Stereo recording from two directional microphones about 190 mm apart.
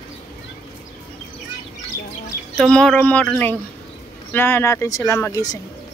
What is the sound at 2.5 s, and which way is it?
Speech, 5° left (ahead or behind).